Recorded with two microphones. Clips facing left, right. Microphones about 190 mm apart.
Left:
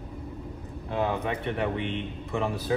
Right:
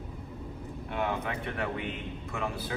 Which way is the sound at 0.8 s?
25° left (ahead or behind).